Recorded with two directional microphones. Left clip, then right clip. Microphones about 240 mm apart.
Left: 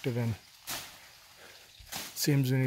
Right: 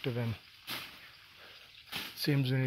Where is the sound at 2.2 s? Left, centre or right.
Left.